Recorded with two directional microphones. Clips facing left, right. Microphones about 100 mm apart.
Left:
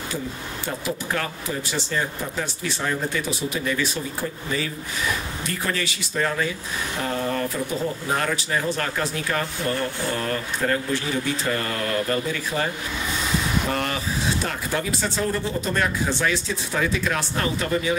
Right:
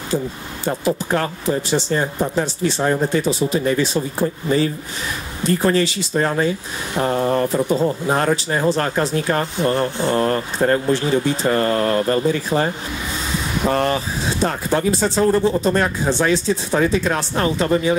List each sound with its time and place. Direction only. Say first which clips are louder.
0.7 s speech: right 9 dB; 35° right (ahead or behind)